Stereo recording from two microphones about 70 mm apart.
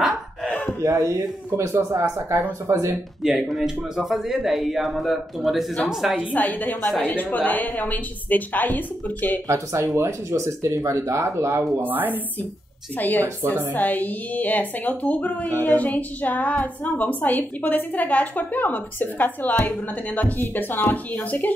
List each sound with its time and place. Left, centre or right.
0.8 s speech: right
2.7 s a woman's voice: right
3.2 s speech: centre
6.3 s a woman's voice: left
9.5 s speech: right
11.8 s speech: right
12.9 s a woman's voice: left
13.2 s a woman's voice: right
13.7 s a woman's voice: left